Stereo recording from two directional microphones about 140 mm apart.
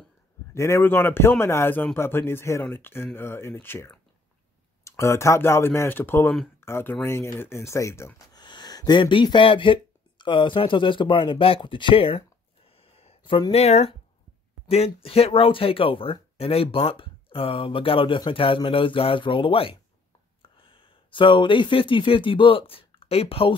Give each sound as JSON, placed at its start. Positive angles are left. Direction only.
{"t": 0.5, "sound": "speech", "side_deg": 20}
{"t": 8.4, "sound": "speech", "side_deg": 30}
{"t": 12.6, "sound": "a sound", "side_deg": 40}
{"t": 14.7, "sound": "speech", "side_deg": 45}